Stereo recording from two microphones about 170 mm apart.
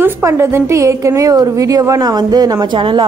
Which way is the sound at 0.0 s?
15° right (ahead or behind).